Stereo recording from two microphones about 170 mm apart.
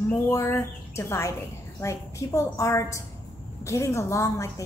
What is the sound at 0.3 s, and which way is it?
A woman's voice, 15° left (ahead or behind).